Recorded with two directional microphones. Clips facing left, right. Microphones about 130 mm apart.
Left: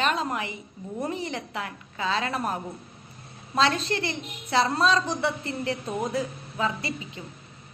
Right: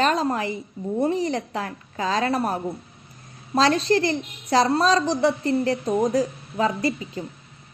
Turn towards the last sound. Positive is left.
turn(degrees=-40)  # may be behind; listen again after turning